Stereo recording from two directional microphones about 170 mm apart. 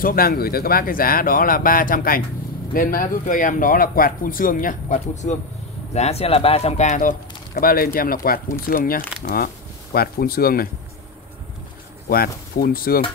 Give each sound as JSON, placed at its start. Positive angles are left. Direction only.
{"t": 0.0, "sound": "speech", "side_deg": 60}
{"t": 7.5, "sound": "speech", "side_deg": 60}
{"t": 12.1, "sound": "speech", "side_deg": 60}